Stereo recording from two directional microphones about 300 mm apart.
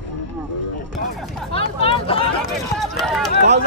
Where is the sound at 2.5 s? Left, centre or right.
Centre.